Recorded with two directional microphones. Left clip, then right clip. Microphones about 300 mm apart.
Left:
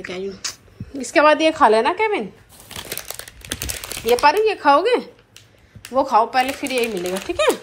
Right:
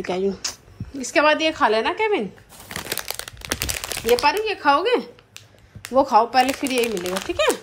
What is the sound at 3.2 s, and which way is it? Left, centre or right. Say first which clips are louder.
Crumpling: right 3 dB; right.